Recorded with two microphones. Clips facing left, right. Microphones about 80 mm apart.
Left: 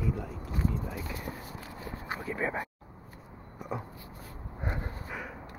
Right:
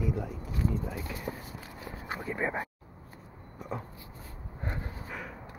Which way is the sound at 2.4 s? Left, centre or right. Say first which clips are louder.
Right 1 dB; centre.